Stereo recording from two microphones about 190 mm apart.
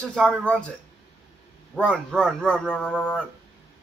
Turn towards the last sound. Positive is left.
turn(degrees=5)  # may be behind; listen again after turning